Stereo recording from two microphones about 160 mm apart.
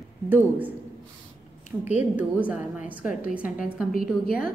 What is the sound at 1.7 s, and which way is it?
A woman's voice, 5° right (ahead or behind).